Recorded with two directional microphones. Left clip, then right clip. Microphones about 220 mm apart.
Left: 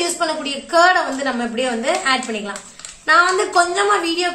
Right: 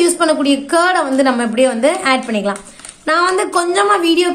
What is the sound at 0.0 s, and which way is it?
A woman's voice, 50° right (ahead or behind).